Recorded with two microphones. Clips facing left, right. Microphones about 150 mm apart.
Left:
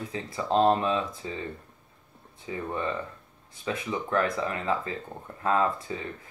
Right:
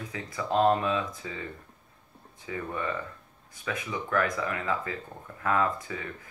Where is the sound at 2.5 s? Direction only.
25° left (ahead or behind).